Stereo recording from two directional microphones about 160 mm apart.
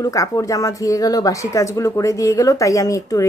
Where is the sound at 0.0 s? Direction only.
20° left (ahead or behind).